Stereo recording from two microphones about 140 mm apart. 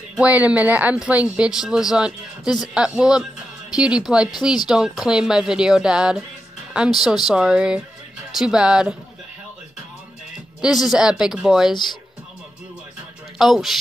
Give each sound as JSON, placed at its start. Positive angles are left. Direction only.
{"t": 0.1, "sound": "a woman's voice", "side_deg": -10}
{"t": 10.6, "sound": "a woman's voice", "side_deg": -5}
{"t": 11.7, "sound": "speech", "side_deg": 30}
{"t": 13.4, "sound": "a woman's voice", "side_deg": 0}